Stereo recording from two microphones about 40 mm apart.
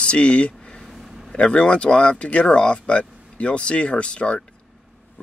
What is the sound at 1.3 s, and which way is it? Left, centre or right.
Speech, left.